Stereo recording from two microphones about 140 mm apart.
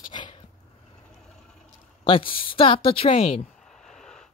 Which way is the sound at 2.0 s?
40° left (ahead or behind).